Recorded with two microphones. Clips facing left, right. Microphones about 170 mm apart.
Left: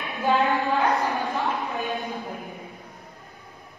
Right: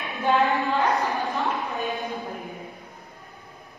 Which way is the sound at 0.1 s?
Centre (ahead or behind).